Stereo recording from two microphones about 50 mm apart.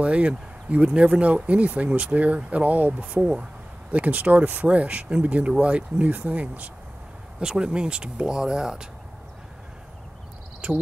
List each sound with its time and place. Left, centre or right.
0.0 s speech: right
7.3 s speech: centre
10.6 s speech: right